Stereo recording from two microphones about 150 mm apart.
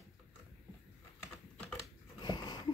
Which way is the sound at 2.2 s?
30° left (ahead or behind).